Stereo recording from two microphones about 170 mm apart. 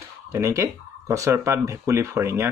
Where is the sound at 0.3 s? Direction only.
15° right (ahead or behind).